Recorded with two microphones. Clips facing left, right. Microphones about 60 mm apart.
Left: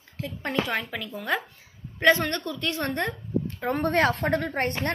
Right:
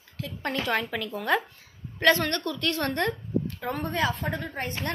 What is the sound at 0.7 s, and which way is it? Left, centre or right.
Speech, centre.